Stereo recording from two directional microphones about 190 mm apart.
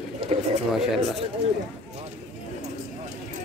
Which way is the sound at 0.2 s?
30° right (ahead or behind).